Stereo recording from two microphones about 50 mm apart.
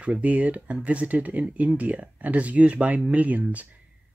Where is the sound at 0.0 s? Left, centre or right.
Right.